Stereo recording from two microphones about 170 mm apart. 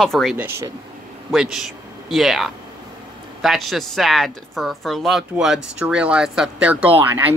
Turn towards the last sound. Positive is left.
turn(degrees=-10)  # may be behind; listen again after turning